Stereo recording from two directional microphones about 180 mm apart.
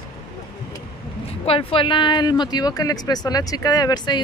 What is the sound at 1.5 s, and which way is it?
Speech, 30° left (ahead or behind).